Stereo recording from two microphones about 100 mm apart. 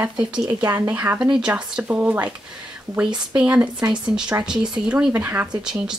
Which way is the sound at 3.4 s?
10° right (ahead or behind).